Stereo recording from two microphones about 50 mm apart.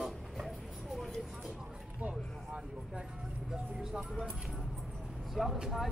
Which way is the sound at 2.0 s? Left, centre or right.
Right.